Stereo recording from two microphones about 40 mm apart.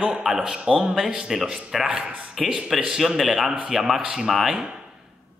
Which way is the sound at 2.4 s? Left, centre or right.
Centre.